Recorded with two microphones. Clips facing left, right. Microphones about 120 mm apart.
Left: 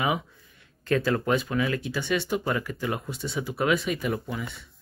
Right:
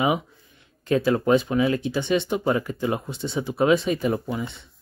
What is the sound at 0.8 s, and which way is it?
Speech, 20° right (ahead or behind).